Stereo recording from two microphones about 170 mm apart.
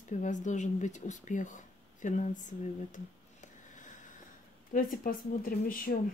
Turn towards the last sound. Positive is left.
turn(degrees=55)  # may be behind; listen again after turning